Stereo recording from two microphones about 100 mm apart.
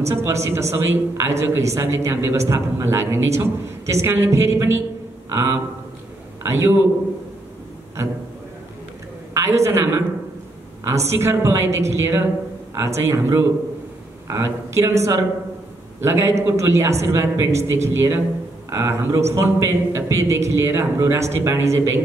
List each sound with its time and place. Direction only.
0.0 s a man's voice: 30° right (ahead or behind)
9.3 s a woman's voice: 25° right (ahead or behind)